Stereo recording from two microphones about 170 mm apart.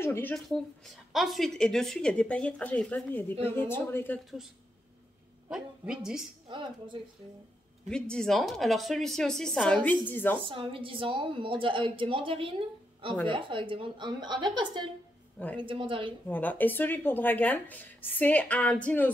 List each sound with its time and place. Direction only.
0.0 s speech: 10° left (ahead or behind)
0.5 s a woman's voice: centre (ahead or behind)
5.5 s a woman's voice: 5° right (ahead or behind)
6.5 s a woman's voice: 25° right (ahead or behind)
7.9 s a woman's voice: 5° left (ahead or behind)
10.4 s a woman's voice: 30° right (ahead or behind)
15.3 s a woman's voice: 10° left (ahead or behind)
15.6 s a woman's voice: 30° right (ahead or behind)
16.3 s speech: 10° left (ahead or behind)